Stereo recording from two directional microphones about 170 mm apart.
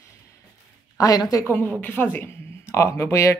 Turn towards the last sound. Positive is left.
turn(degrees=15)  # may be behind; listen again after turning